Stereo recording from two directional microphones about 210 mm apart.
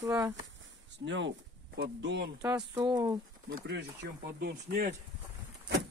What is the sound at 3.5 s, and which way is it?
Speech, 55° right (ahead or behind).